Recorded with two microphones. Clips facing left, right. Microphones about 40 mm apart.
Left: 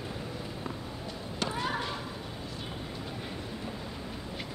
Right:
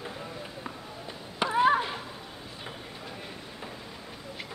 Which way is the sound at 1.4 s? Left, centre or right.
Right.